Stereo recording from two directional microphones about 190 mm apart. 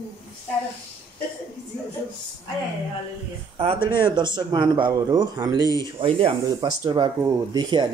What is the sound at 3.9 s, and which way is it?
Speech, 25° right (ahead or behind).